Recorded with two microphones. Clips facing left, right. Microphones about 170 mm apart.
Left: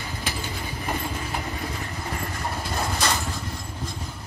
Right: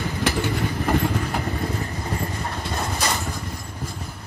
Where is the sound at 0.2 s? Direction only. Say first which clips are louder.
Right 11 dB; 65° right (ahead or behind).